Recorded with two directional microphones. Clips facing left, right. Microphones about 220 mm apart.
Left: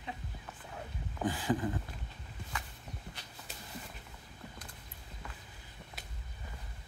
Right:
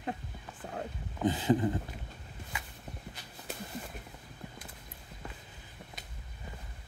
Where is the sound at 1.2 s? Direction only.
25° right (ahead or behind).